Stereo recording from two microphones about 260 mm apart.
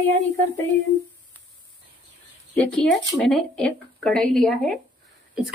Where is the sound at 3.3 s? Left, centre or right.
Centre.